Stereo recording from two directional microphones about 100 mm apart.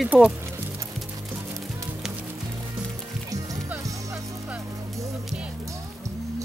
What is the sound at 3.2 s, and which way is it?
Music, 35° right (ahead or behind).